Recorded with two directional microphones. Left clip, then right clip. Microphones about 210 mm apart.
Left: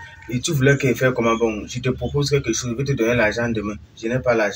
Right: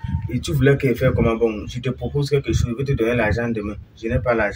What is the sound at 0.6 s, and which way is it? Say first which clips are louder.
Speech: even; 55° right (ahead or behind).